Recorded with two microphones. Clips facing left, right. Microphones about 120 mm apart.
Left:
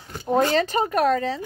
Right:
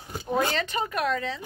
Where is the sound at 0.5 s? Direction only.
40° left (ahead or behind).